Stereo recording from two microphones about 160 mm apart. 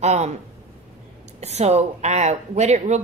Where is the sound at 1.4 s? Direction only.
45° right (ahead or behind).